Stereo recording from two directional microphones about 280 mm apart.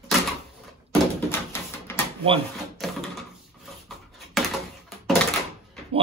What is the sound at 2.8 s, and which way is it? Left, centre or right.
Door, centre.